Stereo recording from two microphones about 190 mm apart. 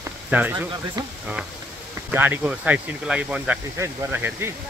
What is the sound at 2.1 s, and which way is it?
Speech, 10° right (ahead or behind).